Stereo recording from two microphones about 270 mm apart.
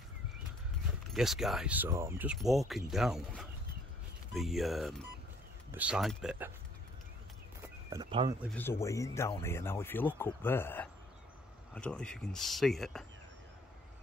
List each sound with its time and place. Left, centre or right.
1.1 s speech: centre
7.9 s speech: centre
8.4 s speech: centre